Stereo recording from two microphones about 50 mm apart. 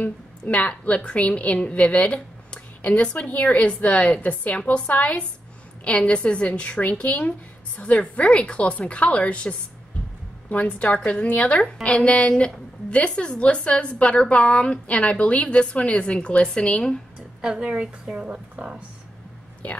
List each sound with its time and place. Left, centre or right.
0.0 s a woman's voice: left
17.4 s a woman's voice: centre
19.6 s a woman's voice: left